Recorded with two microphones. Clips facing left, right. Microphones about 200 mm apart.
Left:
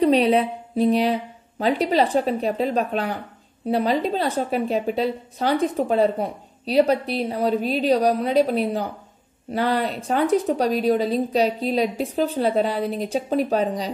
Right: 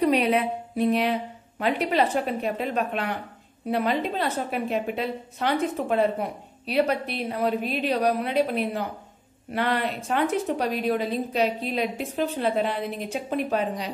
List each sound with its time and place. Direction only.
0.0 s a woman's voice: 30° left (ahead or behind)